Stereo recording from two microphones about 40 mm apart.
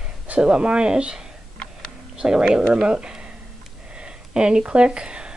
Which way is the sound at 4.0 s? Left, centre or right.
Right.